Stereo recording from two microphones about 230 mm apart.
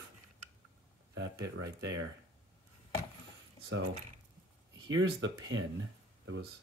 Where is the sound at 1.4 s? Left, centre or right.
Right.